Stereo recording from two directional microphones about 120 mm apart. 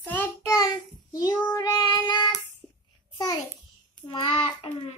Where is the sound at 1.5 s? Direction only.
35° left (ahead or behind).